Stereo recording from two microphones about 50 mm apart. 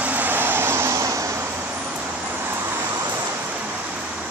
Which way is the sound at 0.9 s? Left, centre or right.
Right.